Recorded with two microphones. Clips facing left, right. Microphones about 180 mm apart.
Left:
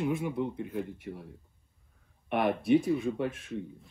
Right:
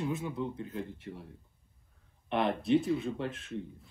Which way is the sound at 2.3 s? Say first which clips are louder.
Left 3 dB; 10° left (ahead or behind).